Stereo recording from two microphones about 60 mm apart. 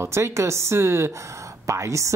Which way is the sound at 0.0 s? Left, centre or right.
Right.